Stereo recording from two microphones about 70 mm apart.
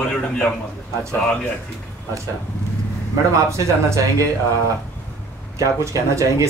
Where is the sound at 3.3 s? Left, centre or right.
Right.